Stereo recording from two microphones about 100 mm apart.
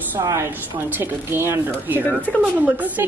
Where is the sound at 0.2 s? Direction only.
30° right (ahead or behind).